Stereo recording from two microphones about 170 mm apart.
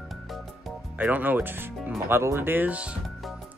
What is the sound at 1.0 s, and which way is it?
Speech, 10° right (ahead or behind).